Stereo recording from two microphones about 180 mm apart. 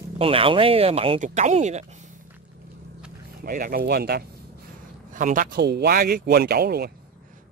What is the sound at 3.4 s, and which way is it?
Speech, 50° right (ahead or behind).